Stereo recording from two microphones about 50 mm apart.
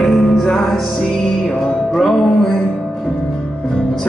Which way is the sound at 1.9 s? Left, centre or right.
Centre.